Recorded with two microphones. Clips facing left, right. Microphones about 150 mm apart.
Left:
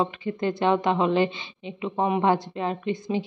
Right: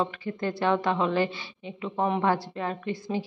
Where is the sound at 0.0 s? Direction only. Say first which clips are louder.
Left 3 dB; 20° left (ahead or behind).